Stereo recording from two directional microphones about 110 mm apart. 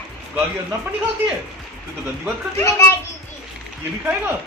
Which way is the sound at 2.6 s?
25° left (ahead or behind).